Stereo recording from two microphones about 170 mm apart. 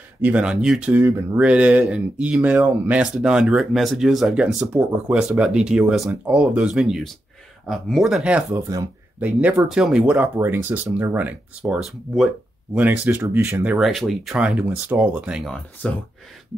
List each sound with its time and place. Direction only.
0.2 s speech: 5° right (ahead or behind)
8.6 s speech: 20° right (ahead or behind)
13.7 s speech: centre (ahead or behind)